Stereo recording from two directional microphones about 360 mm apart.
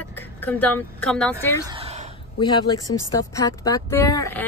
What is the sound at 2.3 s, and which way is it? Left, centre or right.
Speech, centre.